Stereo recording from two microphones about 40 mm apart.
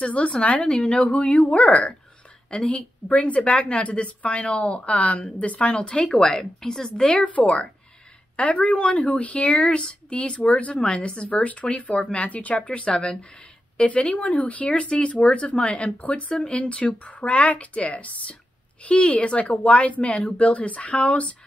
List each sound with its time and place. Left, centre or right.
0.0 s a woman's voice: left
1.0 s a woman's voice: left; by 7.1 s centre
7.1 s a woman's voice: left
16.0 s a woman's voice: left